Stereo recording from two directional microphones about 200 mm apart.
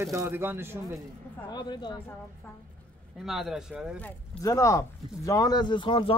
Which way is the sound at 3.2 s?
Centre (ahead or behind).